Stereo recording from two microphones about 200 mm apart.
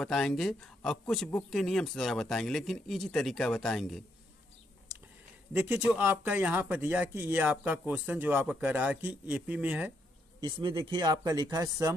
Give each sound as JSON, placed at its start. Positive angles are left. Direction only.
{"t": 0.0, "sound": "a man's voice", "side_deg": 5}
{"t": 5.5, "sound": "speech", "side_deg": -10}
{"t": 10.4, "sound": "speech", "side_deg": -25}